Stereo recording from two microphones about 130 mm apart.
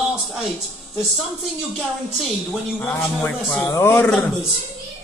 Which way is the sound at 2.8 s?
10° left (ahead or behind).